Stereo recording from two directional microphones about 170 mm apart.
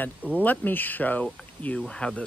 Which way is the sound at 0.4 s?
10° left (ahead or behind).